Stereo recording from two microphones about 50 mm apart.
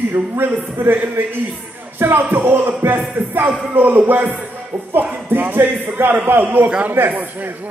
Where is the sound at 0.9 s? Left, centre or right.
Right.